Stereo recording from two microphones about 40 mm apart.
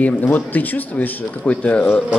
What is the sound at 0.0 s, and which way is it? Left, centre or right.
Speech, left.